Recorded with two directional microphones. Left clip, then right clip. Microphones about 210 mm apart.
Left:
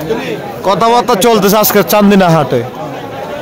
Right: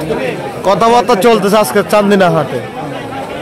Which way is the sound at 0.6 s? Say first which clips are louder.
Even; 10° left (ahead or behind).